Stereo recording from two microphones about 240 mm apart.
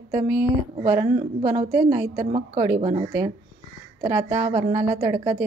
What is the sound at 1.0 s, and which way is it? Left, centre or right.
Speech, right.